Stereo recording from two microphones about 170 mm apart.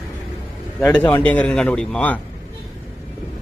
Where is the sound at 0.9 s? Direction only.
10° left (ahead or behind).